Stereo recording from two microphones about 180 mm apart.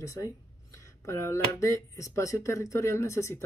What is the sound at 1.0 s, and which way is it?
Speech, 15° left (ahead or behind).